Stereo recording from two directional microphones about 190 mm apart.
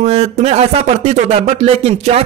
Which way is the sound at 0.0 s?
35° right (ahead or behind).